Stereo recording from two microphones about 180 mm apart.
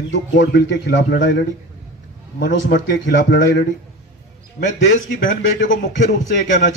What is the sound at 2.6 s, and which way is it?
Speech, 90° left.